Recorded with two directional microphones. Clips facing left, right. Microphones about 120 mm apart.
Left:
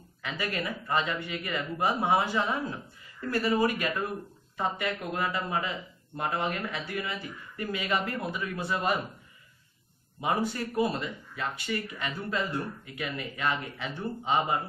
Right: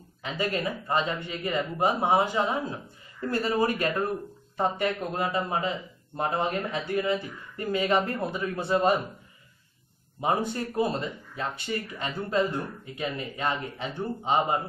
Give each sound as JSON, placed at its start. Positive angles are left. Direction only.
{"t": 0.2, "sound": "speech", "side_deg": -25}
{"t": 10.2, "sound": "speech", "side_deg": -25}